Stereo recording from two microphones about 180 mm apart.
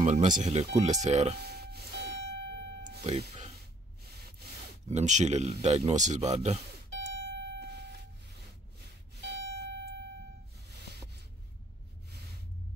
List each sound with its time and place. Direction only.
0.0 s speech: 40° right (ahead or behind)
1.4 s a sound: 60° right (ahead or behind)
3.0 s music: 35° right (ahead or behind)
4.0 s rub: 60° right (ahead or behind)
4.8 s speech: 40° right (ahead or behind)
6.3 s music: 35° right (ahead or behind)
7.3 s vehicle: 70° right (ahead or behind)
9.2 s a sound: 70° right (ahead or behind)
10.7 s music: 65° right (ahead or behind)